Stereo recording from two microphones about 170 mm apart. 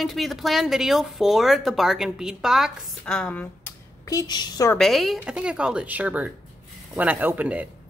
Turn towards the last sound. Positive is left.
turn(degrees=-10)  # may be behind; listen again after turning